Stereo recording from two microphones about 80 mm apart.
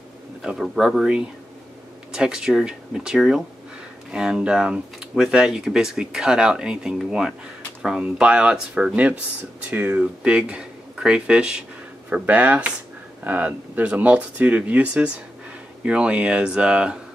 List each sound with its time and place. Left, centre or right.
0.4 s speech: centre